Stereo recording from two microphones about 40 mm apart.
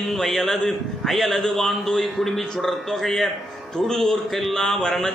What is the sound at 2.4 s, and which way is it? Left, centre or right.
A man's voice, centre.